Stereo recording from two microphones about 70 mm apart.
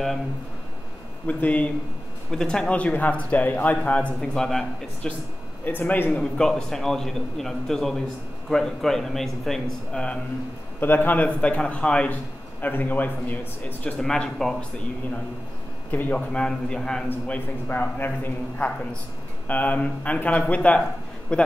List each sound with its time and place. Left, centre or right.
1.2 s speech: left
2.3 s speech: centre
4.2 s a man's voice: centre
5.7 s speech: left
6.2 s a man's voice: centre
10.8 s speech: left
12.5 s speech: left
13.9 s a man's voice: centre
17.3 s a man's voice: left